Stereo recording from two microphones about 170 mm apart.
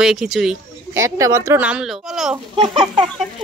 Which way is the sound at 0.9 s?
20° right (ahead or behind).